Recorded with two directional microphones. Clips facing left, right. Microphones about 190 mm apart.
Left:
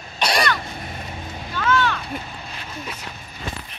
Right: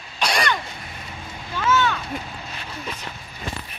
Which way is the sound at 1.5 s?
5° right (ahead or behind).